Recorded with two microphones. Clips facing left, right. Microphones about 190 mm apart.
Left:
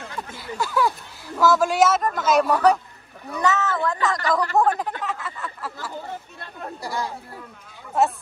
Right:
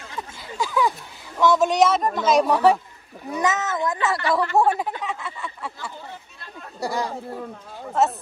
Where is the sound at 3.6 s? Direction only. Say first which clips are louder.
Left 1 dB; 15° right (ahead or behind).